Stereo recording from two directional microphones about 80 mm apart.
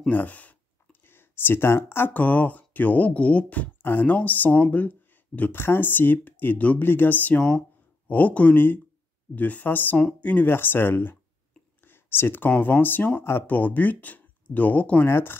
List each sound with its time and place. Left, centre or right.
0.1 s speech: centre
9.9 s speech: centre
10.3 s speech: left
15.0 s speech: left